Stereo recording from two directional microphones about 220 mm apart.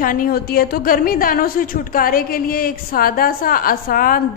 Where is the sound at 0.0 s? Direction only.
40° left (ahead or behind).